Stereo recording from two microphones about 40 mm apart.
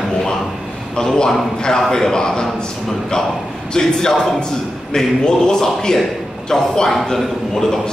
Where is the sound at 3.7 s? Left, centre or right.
Centre.